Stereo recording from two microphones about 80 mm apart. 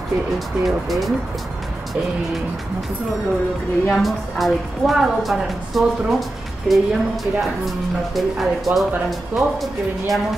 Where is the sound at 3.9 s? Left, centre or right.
Centre.